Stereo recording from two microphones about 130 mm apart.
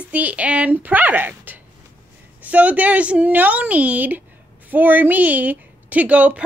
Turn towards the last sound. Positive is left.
turn(degrees=-10)  # may be behind; listen again after turning